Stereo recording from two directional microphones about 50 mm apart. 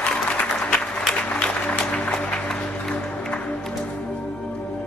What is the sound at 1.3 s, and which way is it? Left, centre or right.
Music, left.